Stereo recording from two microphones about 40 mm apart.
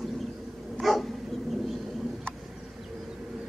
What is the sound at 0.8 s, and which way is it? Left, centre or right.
Dog, centre.